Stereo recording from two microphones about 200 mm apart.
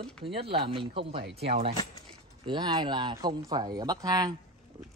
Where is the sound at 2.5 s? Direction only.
20° right (ahead or behind).